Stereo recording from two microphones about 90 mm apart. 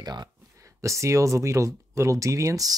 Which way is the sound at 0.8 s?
35° right (ahead or behind).